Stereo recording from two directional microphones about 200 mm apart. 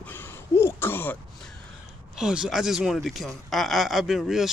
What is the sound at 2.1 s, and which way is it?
Speech, 5° right (ahead or behind).